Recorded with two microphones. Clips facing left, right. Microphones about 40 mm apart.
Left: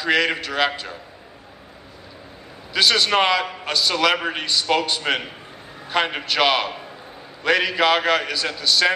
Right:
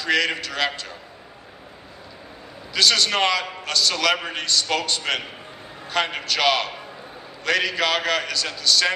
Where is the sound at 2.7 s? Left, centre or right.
Centre.